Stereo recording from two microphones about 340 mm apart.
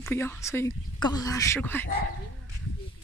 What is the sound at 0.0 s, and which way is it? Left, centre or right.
Speech, centre.